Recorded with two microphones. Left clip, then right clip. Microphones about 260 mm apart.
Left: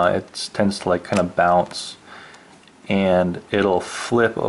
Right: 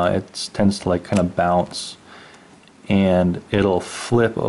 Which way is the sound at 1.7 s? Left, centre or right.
Centre.